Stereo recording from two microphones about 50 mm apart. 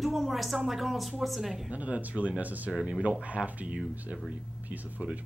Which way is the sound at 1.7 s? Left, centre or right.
Right.